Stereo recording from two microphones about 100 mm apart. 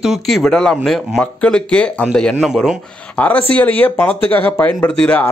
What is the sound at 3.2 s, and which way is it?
Speech, 15° left (ahead or behind).